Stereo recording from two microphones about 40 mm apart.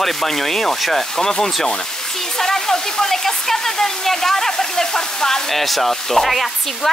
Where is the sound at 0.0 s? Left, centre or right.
Centre.